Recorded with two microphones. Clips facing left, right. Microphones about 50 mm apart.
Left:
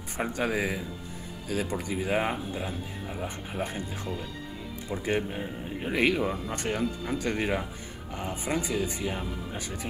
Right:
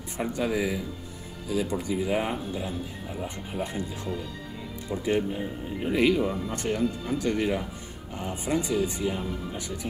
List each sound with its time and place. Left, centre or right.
0.4 s speech: left
8.1 s speech: left